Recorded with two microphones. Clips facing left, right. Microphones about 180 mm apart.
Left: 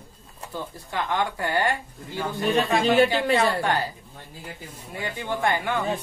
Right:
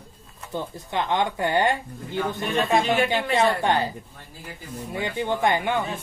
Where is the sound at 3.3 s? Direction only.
20° right (ahead or behind).